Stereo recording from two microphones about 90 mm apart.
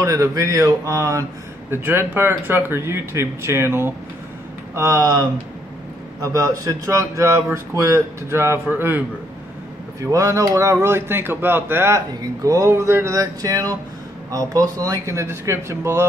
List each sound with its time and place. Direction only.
0.0 s speech: 35° right (ahead or behind)
1.7 s speech: 25° right (ahead or behind)
4.7 s speech: 40° right (ahead or behind); by 9.0 s 20° right (ahead or behind)
10.1 s speech: 40° right (ahead or behind)
12.2 s speech: 40° right (ahead or behind)